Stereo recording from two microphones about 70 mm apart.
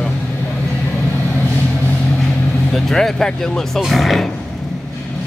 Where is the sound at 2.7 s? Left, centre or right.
Centre.